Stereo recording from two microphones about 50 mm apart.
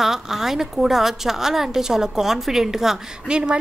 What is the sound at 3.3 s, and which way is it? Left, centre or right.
Speech, centre.